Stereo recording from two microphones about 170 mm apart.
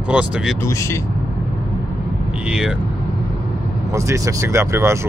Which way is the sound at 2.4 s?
5° right (ahead or behind).